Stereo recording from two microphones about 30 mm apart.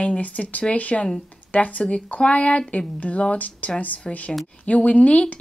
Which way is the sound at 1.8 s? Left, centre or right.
Left.